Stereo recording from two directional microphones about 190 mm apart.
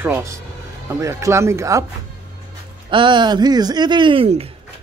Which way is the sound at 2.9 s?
25° right (ahead or behind).